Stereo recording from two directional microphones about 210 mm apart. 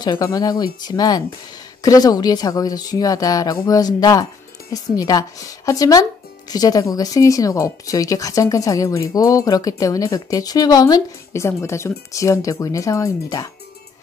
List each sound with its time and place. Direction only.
0.0 s speech: 20° left (ahead or behind)